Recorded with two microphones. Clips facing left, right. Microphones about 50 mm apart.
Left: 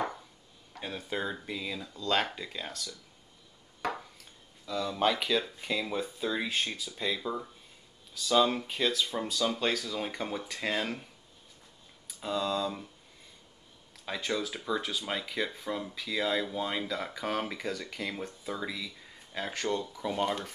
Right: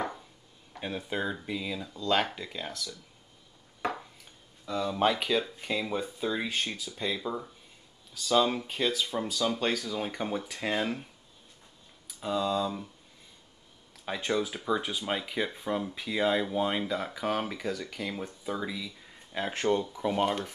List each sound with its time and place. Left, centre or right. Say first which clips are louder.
0.7 s speech: right 2 dB; centre
4.6 s speech: right 2 dB; centre
12.2 s speech: right 2 dB; centre
14.0 s speech: right 3 dB; centre
19.3 s speech: right 4 dB; right
20.2 s speech: right 2 dB; centre